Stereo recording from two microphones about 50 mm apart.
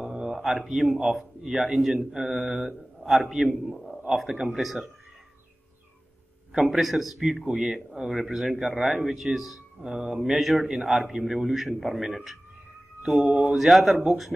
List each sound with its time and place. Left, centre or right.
0.0 s a sound: centre
0.7 s speech: centre
3.7 s a sound: centre
4.1 s speech: centre
6.5 s speech: centre
13.1 s speech: right
13.6 s speech: centre